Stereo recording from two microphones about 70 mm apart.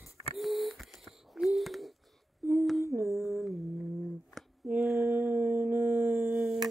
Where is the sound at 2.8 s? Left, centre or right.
Right.